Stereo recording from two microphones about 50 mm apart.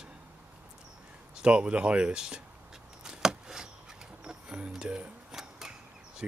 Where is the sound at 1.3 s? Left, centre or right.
Right.